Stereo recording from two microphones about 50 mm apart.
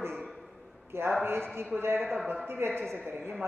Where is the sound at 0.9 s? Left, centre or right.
Right.